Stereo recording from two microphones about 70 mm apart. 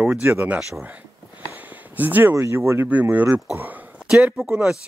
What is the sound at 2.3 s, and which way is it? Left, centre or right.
Speech, right.